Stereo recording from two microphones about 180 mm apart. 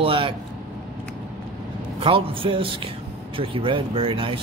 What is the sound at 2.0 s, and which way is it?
Speech, 30° right (ahead or behind).